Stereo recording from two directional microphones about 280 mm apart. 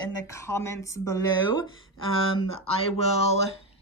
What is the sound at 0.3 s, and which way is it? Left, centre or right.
Speech, centre.